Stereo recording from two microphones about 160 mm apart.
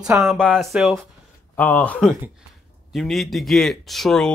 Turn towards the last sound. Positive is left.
turn(degrees=0)  # may be behind; listen again after turning